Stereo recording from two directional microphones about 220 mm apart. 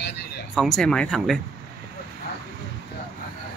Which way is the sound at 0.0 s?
50° left (ahead or behind).